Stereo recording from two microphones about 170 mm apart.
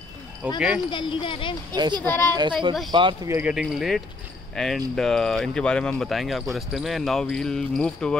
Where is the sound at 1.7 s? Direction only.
25° right (ahead or behind).